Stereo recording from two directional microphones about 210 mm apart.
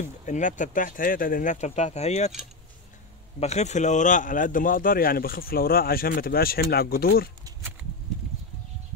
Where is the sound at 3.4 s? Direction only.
30° left (ahead or behind).